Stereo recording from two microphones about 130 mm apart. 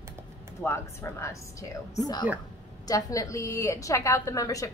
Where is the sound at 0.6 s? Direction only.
20° left (ahead or behind).